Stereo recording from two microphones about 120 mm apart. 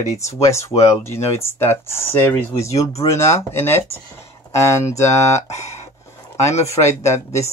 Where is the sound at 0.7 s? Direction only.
60° left (ahead or behind).